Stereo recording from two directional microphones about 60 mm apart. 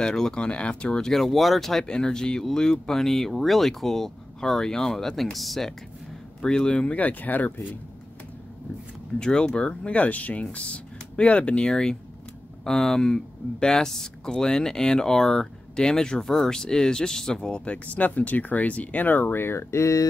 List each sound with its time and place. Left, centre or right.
0.0 s speech: centre
6.4 s speech: centre; by 7.6 s left
9.2 s speech: centre; by 20.1 s left